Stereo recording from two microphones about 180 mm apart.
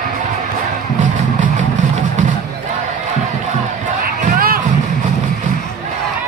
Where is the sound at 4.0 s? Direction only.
55° right (ahead or behind).